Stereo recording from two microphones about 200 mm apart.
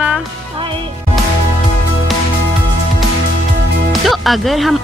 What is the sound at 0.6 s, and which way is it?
Music, 25° right (ahead or behind).